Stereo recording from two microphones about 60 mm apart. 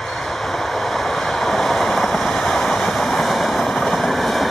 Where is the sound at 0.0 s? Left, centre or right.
Centre.